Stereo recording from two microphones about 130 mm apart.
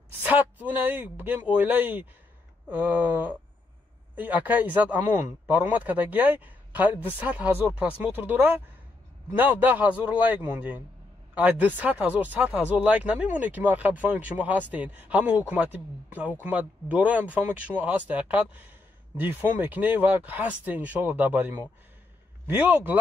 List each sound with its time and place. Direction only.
0.2 s speech: 15° right (ahead or behind)